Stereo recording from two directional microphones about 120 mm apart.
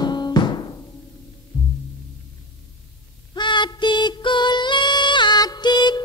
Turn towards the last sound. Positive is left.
turn(degrees=35)  # may be behind; listen again after turning